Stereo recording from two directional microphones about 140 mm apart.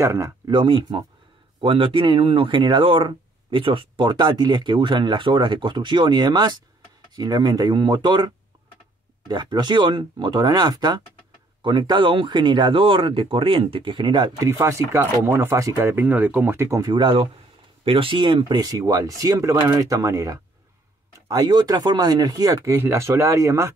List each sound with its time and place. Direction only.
0.0 s speech: 20° right (ahead or behind)
0.5 s speech: 35° right (ahead or behind)
9.3 s speech: 30° right (ahead or behind)
14.5 s speech: 20° right (ahead or behind)
16.9 s speech: 35° right (ahead or behind); by 23.7 s 20° right (ahead or behind)